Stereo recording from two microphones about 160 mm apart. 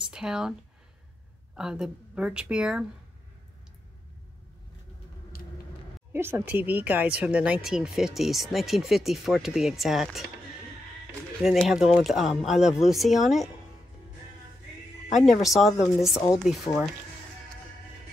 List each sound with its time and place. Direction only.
0.1 s speech: 5° right (ahead or behind)
1.6 s speech: 5° right (ahead or behind)
5.3 s vehicle: 70° left (ahead or behind)
6.1 s speech: 15° right (ahead or behind)
11.4 s speech: centre (ahead or behind)
15.1 s speech: centre (ahead or behind)